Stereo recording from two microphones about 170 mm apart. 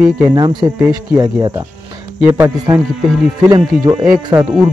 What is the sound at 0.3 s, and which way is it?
Speech, 25° right (ahead or behind).